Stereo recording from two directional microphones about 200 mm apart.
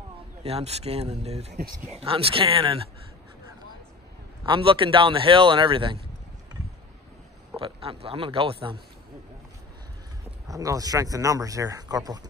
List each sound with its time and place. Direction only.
0.4 s speech: 30° right (ahead or behind)
4.5 s speech: 25° right (ahead or behind)
7.5 s speech: 25° right (ahead or behind)
10.5 s speech: 15° right (ahead or behind)